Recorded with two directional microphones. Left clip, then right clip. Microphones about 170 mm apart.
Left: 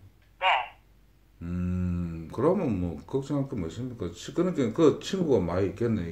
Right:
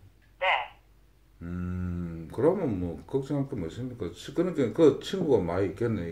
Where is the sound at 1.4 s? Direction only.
30° left (ahead or behind).